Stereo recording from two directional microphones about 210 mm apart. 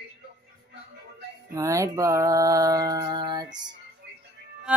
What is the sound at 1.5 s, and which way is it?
Music, 15° right (ahead or behind).